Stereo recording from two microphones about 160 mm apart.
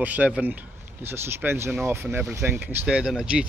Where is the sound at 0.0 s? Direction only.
10° right (ahead or behind).